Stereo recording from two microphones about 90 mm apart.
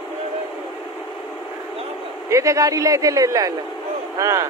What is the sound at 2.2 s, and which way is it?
Speech, 35° right (ahead or behind).